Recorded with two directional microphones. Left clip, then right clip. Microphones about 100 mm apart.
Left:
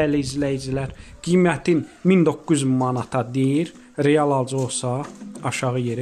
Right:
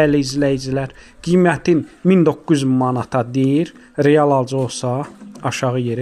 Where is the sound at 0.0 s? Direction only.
45° right (ahead or behind).